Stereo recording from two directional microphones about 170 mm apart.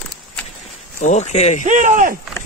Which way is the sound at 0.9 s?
45° left (ahead or behind).